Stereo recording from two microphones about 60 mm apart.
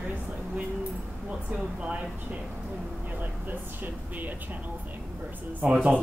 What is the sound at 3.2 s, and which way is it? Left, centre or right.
Air conditioning, right.